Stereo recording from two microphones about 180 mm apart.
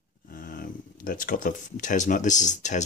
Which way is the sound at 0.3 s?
50° left (ahead or behind).